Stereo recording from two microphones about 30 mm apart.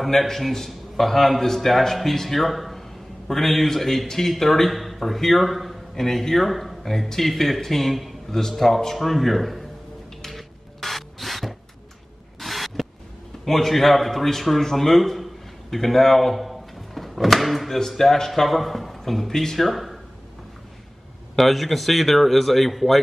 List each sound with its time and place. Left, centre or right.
0.0 s a man's voice: centre
8.3 s a man's voice: centre
10.2 s rub: centre
12.4 s a sound: centre
13.5 s a man's voice: centre
19.6 s speech: centre
21.4 s speech: centre